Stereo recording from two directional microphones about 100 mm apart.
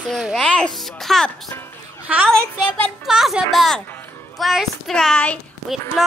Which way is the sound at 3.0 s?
5° right (ahead or behind).